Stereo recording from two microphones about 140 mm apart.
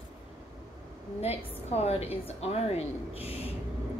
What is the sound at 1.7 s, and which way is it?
Speech, 50° left (ahead or behind).